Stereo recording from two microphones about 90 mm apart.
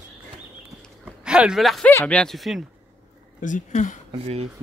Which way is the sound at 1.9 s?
20° left (ahead or behind).